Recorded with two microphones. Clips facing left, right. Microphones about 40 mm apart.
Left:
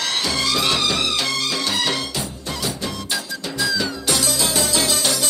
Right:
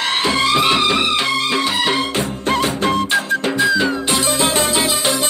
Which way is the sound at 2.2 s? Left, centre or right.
Right.